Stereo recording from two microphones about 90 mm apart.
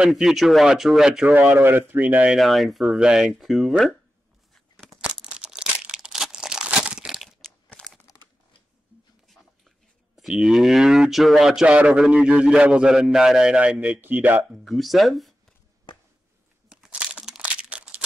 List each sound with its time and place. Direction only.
0.0 s speech: 5° right (ahead or behind)
1.2 s speech: 20° right (ahead or behind)
2.3 s speech: centre (ahead or behind)
4.7 s crumpling: 5° right (ahead or behind)
10.1 s a man's voice: 5° right (ahead or behind)
14.5 s speech: centre (ahead or behind)
16.6 s crumpling: 10° right (ahead or behind)